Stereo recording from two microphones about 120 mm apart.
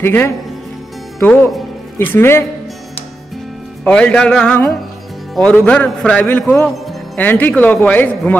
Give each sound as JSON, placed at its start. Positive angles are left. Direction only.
{"t": 0.0, "sound": "speech", "side_deg": 20}
{"t": 3.8, "sound": "speech", "side_deg": 10}